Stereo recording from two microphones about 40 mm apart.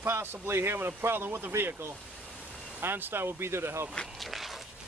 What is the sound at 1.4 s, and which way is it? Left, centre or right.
Speech, right.